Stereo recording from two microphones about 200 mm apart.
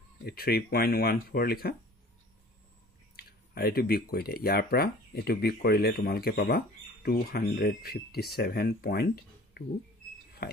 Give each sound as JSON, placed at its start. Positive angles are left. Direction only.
{"t": 0.2, "sound": "speech", "side_deg": 50}
{"t": 3.2, "sound": "speech", "side_deg": 50}
{"t": 10.4, "sound": "chink", "side_deg": 45}